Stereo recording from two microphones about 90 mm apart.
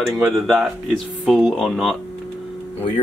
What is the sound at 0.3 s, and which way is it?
Speech, centre (ahead or behind).